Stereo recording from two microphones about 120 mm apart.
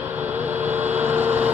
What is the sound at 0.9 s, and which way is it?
Vehicle, 15° right (ahead or behind).